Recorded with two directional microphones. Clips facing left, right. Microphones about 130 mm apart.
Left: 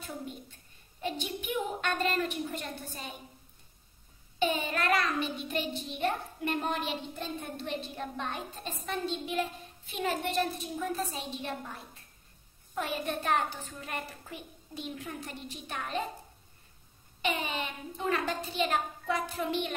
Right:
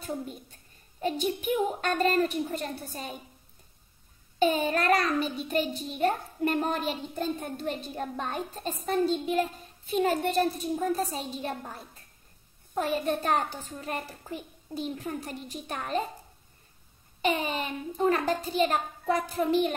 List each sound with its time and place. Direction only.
0.0 s a sound: 40° right (ahead or behind)
1.0 s a child's voice: 40° right (ahead or behind)
4.4 s a child's voice: 40° right (ahead or behind)
17.2 s a child's voice: 40° right (ahead or behind)